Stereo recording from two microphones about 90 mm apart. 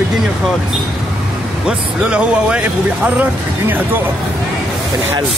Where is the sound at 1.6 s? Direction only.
10° right (ahead or behind).